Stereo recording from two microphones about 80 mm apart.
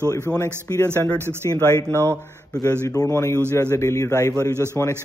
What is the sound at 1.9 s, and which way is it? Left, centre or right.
Speech, right.